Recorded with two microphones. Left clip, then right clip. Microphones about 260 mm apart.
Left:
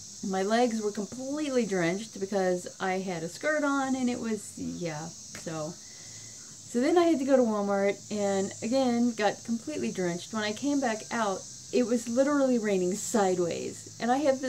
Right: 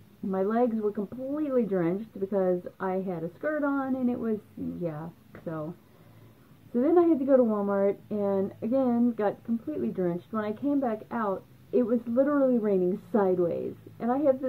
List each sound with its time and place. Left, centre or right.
0.3 s speech: centre
6.7 s speech: centre